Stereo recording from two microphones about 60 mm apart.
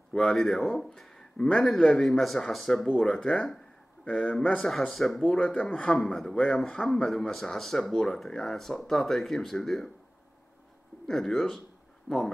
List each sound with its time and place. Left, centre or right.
0.1 s a man's voice: centre
4.0 s a man's voice: left
4.6 s speech: centre
5.3 s a man's voice: centre
5.9 s speech: centre
6.3 s a man's voice: centre
6.6 s a man's voice: centre
11.1 s a man's voice: centre